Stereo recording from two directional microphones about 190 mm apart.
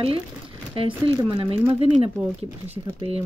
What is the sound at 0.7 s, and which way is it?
Speech, 25° right (ahead or behind).